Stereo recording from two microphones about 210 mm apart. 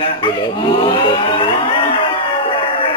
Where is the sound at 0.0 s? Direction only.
25° left (ahead or behind).